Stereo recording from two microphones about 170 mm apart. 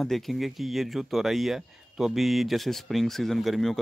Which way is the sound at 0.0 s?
Centre (ahead or behind).